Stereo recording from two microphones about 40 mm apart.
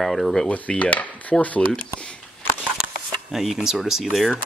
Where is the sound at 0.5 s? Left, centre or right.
Left.